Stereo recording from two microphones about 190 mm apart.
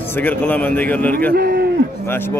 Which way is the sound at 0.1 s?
10° left (ahead or behind).